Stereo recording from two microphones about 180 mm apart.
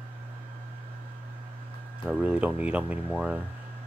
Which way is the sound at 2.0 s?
5° right (ahead or behind).